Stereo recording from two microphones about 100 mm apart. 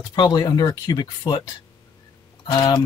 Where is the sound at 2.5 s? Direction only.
35° left (ahead or behind).